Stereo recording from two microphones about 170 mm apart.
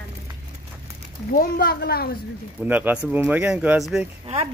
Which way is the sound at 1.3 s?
60° left (ahead or behind).